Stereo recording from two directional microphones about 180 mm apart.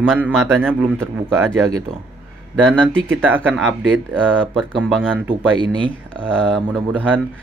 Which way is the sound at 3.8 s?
5° left (ahead or behind).